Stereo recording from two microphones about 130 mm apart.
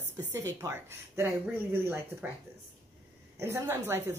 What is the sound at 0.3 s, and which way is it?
A woman's voice, 20° right (ahead or behind).